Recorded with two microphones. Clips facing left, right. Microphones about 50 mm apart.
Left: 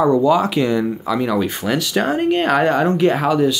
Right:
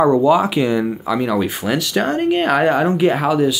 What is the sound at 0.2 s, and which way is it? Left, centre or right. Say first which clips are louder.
Speech: right 1 dB; centre.